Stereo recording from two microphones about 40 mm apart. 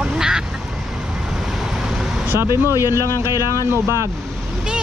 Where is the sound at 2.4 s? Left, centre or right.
Right.